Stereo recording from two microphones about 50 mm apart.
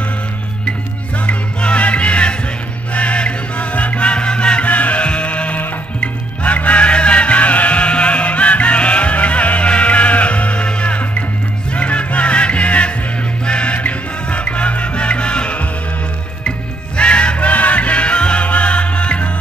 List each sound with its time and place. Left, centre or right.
1.2 s music: left
4.6 s music: left